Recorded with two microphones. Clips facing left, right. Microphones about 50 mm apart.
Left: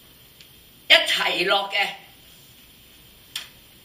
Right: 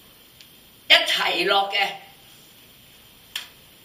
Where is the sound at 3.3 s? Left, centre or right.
Right.